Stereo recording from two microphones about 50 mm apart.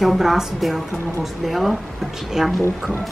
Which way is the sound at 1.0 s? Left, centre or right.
Left.